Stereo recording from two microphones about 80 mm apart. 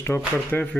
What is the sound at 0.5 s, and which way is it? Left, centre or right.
Speech, centre.